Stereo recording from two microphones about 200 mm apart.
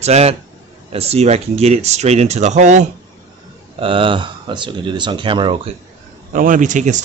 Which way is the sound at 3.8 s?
25° right (ahead or behind).